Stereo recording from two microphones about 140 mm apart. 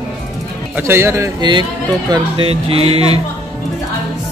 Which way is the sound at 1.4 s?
30° right (ahead or behind).